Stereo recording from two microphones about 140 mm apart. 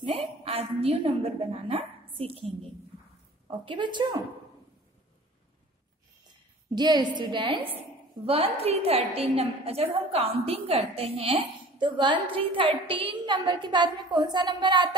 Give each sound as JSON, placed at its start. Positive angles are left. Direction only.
{"t": 0.0, "sound": "a woman's voice", "side_deg": -45}
{"t": 3.4, "sound": "a woman's voice", "side_deg": -35}
{"t": 6.7, "sound": "a woman's voice", "side_deg": -30}
{"t": 8.5, "sound": "a woman's voice", "side_deg": -45}